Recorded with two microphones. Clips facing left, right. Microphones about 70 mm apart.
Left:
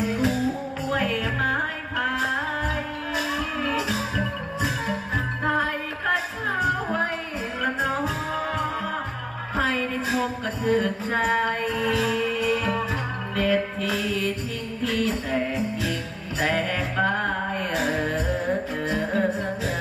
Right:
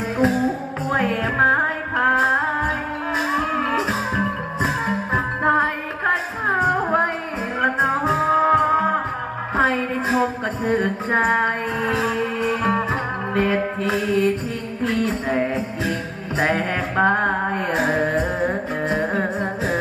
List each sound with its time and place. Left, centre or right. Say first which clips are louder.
0.0 s music: right 4 dB; right
9.6 s a sound: right 5 dB; right
14.8 s music: right 3 dB; right